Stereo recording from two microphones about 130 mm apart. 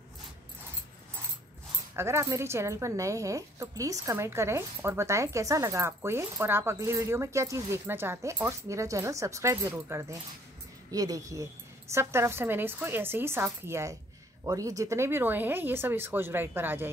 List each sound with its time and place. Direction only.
2.0 s speech: 20° right (ahead or behind)